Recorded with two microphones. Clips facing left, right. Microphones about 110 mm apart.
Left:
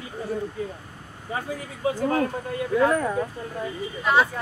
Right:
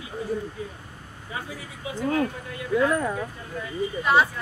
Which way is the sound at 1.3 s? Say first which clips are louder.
Left 5 dB; 40° left (ahead or behind).